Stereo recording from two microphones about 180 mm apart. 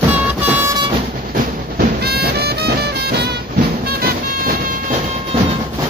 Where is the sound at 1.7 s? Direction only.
60° right (ahead or behind).